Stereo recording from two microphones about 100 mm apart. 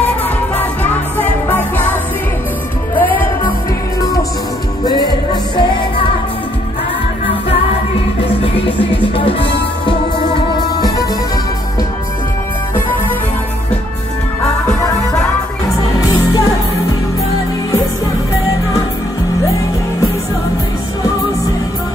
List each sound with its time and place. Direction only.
1.2 s music: 20° left (ahead or behind)
4.8 s music: 45° left (ahead or behind)
8.4 s music: 70° left (ahead or behind)